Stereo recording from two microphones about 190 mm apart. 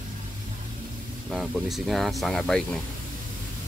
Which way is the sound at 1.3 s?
Centre (ahead or behind).